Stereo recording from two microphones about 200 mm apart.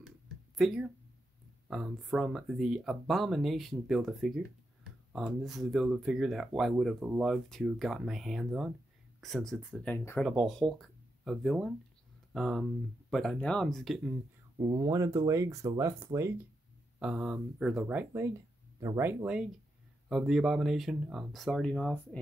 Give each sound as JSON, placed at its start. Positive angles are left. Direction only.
{"t": 0.6, "sound": "speech", "side_deg": 0}
{"t": 14.6, "sound": "speech", "side_deg": -15}